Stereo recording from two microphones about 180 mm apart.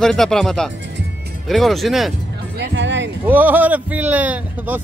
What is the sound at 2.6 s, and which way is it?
Music, 85° right.